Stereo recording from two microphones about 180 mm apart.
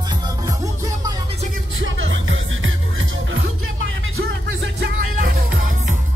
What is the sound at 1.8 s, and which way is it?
Music, 90° right.